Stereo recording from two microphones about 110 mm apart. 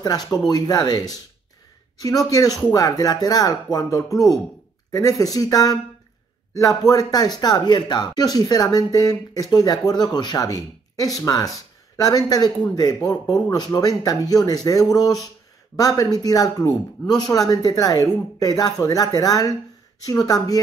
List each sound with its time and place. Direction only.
0.0 s speech: 35° left (ahead or behind)